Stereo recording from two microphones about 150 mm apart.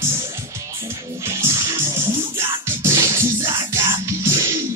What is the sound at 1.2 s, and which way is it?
Music, 20° right (ahead or behind).